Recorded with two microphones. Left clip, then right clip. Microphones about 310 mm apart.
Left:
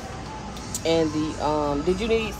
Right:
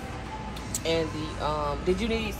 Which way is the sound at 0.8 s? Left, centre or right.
Left.